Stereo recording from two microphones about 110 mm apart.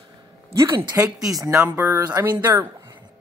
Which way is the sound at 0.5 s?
30° right (ahead or behind).